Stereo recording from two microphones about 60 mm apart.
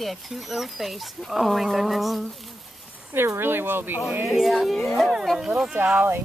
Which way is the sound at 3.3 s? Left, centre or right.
Right.